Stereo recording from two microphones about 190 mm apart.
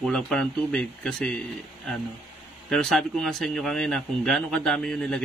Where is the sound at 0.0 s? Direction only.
5° left (ahead or behind).